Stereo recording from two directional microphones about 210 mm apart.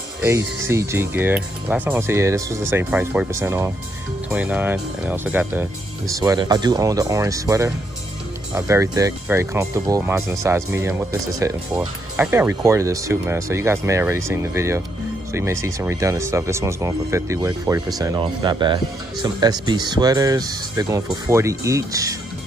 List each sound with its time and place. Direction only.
0.2 s speech: 15° right (ahead or behind)